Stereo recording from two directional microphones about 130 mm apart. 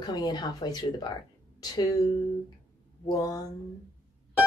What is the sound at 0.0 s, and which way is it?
Speech, 35° left (ahead or behind).